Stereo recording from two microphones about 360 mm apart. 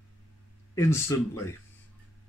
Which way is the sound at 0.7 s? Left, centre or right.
Centre.